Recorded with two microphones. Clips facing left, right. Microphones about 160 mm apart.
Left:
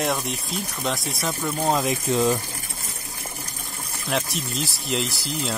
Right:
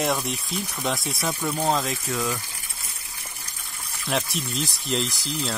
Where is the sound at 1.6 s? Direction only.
15° left (ahead or behind).